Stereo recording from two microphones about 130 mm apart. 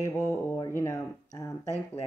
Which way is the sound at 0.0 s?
20° left (ahead or behind).